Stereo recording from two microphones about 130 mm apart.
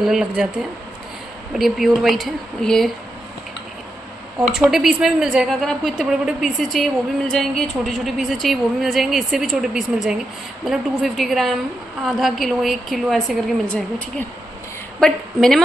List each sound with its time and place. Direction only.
0.0 s a woman's voice: 5° right (ahead or behind)
1.6 s a woman's voice: centre (ahead or behind)
4.5 s a woman's voice: 5° right (ahead or behind)
15.0 s a woman's voice: 5° left (ahead or behind)